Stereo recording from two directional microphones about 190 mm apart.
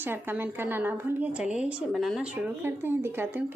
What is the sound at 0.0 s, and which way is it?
A woman's voice, 10° right (ahead or behind).